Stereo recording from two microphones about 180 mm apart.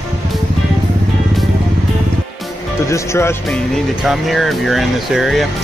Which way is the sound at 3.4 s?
Centre (ahead or behind).